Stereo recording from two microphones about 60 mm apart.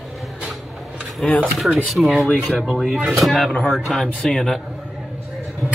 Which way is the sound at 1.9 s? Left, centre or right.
Centre.